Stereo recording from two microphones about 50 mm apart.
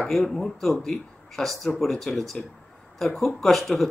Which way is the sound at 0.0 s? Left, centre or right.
Centre.